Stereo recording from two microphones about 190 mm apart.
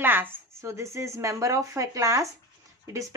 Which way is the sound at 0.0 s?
10° right (ahead or behind).